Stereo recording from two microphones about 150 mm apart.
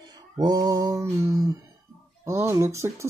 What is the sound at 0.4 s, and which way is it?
Speech, 25° right (ahead or behind).